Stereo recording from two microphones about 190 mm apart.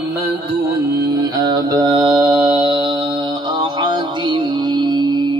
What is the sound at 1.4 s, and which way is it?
Mantra, 20° right (ahead or behind).